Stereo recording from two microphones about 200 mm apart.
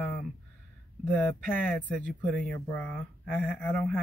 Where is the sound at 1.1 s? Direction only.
5° left (ahead or behind).